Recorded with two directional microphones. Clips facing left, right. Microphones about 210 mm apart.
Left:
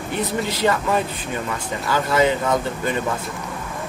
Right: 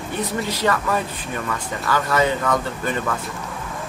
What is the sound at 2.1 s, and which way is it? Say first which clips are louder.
Speech: left 2 dB; 25° left (ahead or behind).